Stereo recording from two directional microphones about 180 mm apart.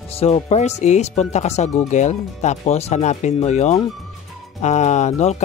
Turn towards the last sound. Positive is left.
turn(degrees=40)  # may be behind; listen again after turning